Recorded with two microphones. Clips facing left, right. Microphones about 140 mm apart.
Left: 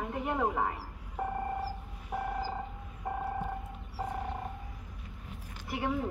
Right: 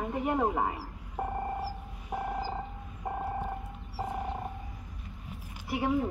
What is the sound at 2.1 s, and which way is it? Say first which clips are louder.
Telephone dialing: right 1 dB; 5° left (ahead or behind).